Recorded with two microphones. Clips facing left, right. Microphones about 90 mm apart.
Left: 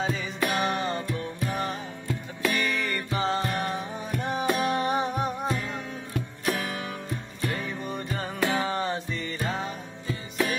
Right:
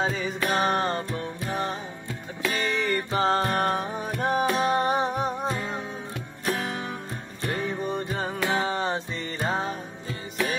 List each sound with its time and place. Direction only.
0.0 s music: 40° right (ahead or behind)
4.5 s music: 35° right (ahead or behind)